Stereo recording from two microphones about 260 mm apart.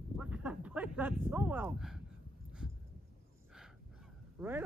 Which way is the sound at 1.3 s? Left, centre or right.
Centre.